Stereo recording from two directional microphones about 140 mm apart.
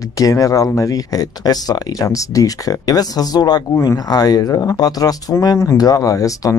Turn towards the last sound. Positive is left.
turn(degrees=25)  # may be behind; listen again after turning